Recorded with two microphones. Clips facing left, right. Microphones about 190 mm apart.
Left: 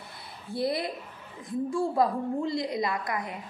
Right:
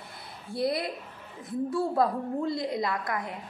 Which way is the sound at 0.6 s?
25° left (ahead or behind).